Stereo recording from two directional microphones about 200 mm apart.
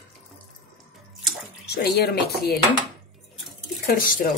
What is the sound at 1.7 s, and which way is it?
Speech, 55° left (ahead or behind).